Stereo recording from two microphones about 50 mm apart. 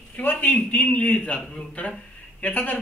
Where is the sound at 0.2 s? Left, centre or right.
Left.